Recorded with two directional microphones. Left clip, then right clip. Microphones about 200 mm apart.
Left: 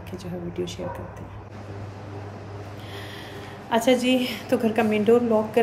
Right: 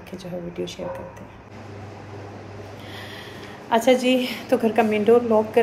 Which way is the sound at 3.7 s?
10° left (ahead or behind).